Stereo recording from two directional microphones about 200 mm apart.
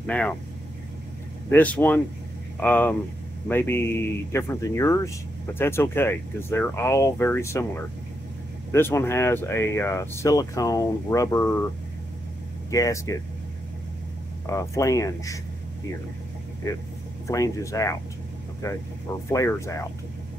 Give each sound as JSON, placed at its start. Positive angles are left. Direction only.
{"t": 0.0, "sound": "speech", "side_deg": 5}
{"t": 1.5, "sound": "speech", "side_deg": 10}
{"t": 12.7, "sound": "speech", "side_deg": 15}
{"t": 14.4, "sound": "speech", "side_deg": 15}
{"t": 17.3, "sound": "speech", "side_deg": 15}